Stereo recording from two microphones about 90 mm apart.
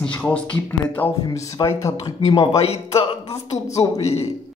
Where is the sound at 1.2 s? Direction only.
40° left (ahead or behind).